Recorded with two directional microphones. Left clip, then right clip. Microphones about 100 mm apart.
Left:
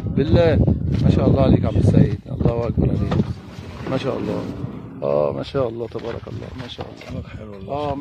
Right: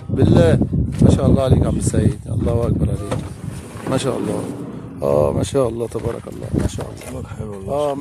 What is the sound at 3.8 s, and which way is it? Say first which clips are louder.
Speech: right 3 dB; 45° right (ahead or behind).